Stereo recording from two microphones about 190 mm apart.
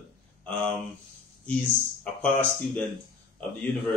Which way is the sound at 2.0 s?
5° left (ahead or behind).